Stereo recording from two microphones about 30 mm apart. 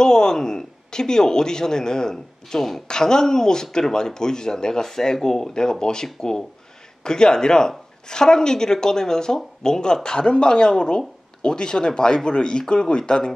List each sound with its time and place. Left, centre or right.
0.0 s speech: left
5.5 s speech: left